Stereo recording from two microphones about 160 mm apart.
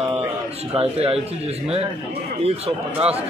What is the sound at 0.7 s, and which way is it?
Speech, 40° right (ahead or behind).